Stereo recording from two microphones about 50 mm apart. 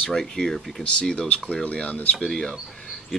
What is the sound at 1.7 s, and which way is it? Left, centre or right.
Speech, left.